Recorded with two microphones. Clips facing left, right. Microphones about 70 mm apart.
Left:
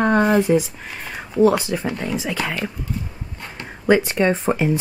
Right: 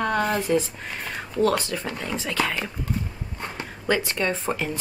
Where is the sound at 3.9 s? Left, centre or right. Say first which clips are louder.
Left 8 dB; left.